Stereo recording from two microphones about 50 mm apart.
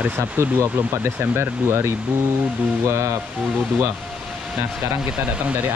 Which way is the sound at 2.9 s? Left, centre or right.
Right.